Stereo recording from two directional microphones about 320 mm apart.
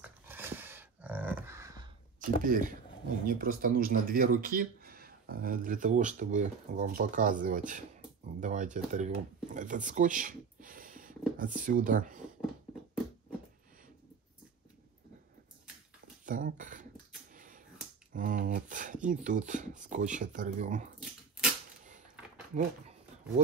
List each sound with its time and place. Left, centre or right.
0.0 s a sound: centre
2.1 s speech: right
16.3 s speech: right
17.3 s finger snapping: right
18.1 s a sound: right
19.0 s speech: right
21.0 s dog: centre